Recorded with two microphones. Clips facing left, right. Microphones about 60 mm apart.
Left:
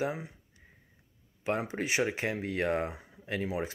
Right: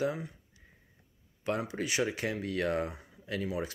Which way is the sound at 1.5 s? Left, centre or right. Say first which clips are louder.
Left 2 dB; left.